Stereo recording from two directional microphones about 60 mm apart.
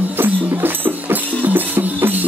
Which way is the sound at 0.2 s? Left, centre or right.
Right.